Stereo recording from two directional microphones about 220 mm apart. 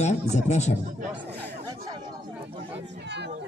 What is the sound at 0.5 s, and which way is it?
Speech, 30° left (ahead or behind).